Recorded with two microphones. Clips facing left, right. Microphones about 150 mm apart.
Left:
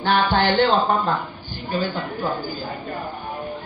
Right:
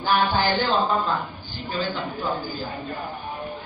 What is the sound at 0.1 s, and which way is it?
Music, 65° left (ahead or behind).